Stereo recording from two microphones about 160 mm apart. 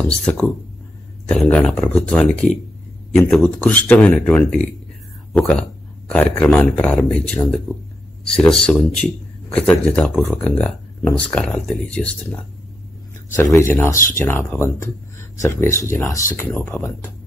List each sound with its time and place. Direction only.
0.0 s a man's voice: 5° left (ahead or behind)
13.4 s speech: 15° left (ahead or behind)